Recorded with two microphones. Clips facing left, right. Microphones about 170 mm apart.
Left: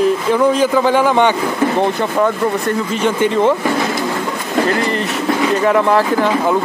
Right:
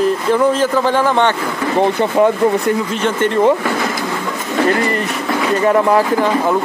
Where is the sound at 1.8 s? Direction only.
20° right (ahead or behind).